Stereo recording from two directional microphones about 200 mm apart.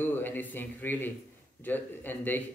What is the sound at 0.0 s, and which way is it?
A man's voice, 10° left (ahead or behind).